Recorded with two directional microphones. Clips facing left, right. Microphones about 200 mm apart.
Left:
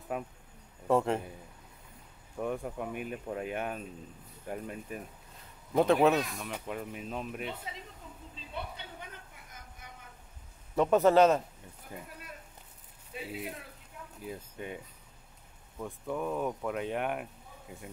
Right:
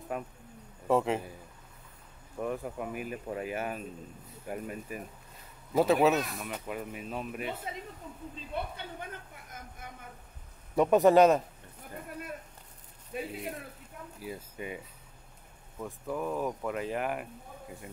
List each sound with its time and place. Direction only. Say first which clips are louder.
0.1 s speech: left 1 dB; centre (ahead or behind)
2.3 s speech: even; centre (ahead or behind)
7.7 s speech: right 5 dB; 50° right (ahead or behind)
8.5 s music: right 4 dB; 50° right (ahead or behind)
10.8 s a man's voice: right 2 dB; 15° right (ahead or behind)
13.1 s speech: right 6 dB; 50° right (ahead or behind)
14.2 s speech: right 1 dB; 5° right (ahead or behind)
15.8 s speech: even; centre (ahead or behind)